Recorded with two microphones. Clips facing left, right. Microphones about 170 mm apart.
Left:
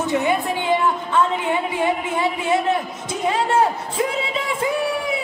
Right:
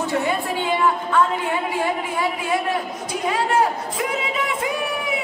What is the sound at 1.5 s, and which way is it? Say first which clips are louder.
A woman's voice: left 2 dB; 20° left (ahead or behind).